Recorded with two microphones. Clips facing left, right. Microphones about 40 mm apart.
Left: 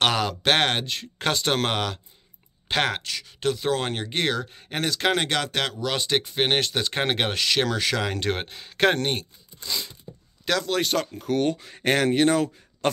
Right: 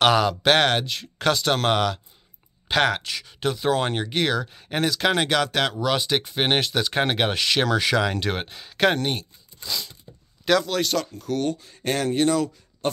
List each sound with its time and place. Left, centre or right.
0.0 s speech: centre
10.4 s a man's voice: centre
10.7 s speech: centre
11.1 s speech: left
11.5 s speech: left
12.8 s a sound: left